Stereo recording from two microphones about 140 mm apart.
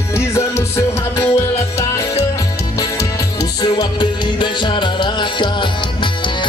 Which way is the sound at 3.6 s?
30° left (ahead or behind).